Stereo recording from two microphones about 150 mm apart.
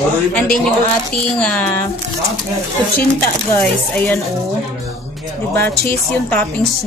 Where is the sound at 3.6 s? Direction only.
10° left (ahead or behind).